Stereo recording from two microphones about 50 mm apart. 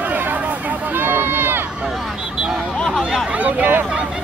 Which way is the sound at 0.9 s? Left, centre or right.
Right.